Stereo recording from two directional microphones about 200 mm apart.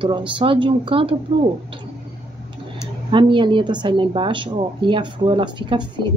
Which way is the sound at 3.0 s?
25° right (ahead or behind).